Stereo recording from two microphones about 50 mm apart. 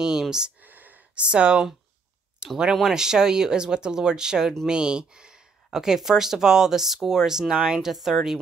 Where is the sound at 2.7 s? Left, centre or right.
Centre.